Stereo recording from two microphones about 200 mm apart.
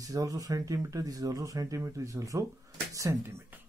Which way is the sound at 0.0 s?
15° right (ahead or behind).